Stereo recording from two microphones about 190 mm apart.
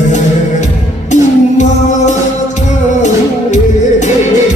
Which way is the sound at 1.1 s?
40° left (ahead or behind).